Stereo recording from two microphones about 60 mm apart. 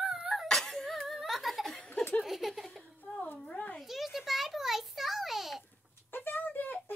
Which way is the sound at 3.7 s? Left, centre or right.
Centre.